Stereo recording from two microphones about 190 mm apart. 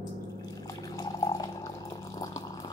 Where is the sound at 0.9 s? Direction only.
20° left (ahead or behind).